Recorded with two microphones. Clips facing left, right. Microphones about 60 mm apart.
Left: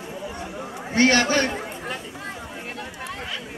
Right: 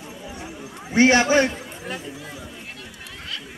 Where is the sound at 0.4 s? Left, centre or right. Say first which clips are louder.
Left 3 dB; left.